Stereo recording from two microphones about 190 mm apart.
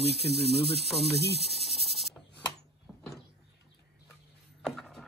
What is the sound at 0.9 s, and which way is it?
Speech, 30° left (ahead or behind).